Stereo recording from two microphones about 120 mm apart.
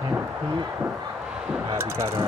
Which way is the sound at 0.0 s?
25° right (ahead or behind).